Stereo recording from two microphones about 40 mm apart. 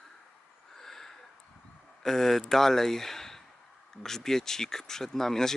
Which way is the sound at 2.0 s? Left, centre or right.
Centre.